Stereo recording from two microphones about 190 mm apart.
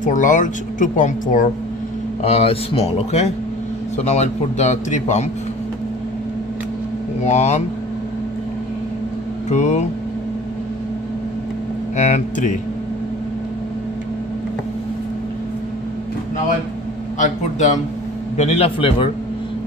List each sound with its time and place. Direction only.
0.0 s speech: 40° left (ahead or behind)
2.2 s a man's voice: 30° left (ahead or behind)
7.2 s a man's voice: 35° left (ahead or behind)
9.5 s a man's voice: 40° left (ahead or behind)
12.0 s a man's voice: 40° left (ahead or behind)
17.2 s a man's voice: 40° left (ahead or behind)